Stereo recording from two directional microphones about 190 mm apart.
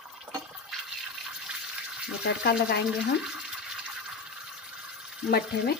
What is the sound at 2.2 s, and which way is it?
Speech, 60° left (ahead or behind).